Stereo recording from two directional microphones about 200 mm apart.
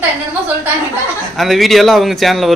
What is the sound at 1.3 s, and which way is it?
Speech, centre (ahead or behind).